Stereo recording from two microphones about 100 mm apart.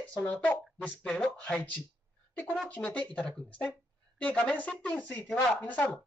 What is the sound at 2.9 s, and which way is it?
Speech, 10° left (ahead or behind).